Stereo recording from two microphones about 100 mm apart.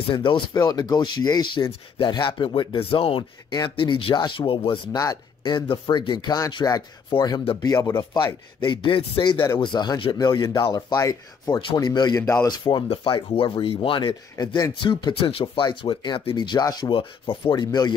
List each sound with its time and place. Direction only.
0.1 s speech: 55° left (ahead or behind)
0.5 s speech: 40° left (ahead or behind); by 3.3 s 65° left (ahead or behind)
3.5 s speech: 50° left (ahead or behind)
4.9 s speech: 45° left (ahead or behind)
12.2 s speech: 25° left (ahead or behind)
12.4 s speech: 45° left (ahead or behind)
12.8 s speech: 65° left (ahead or behind); by 17.9 s 45° left (ahead or behind)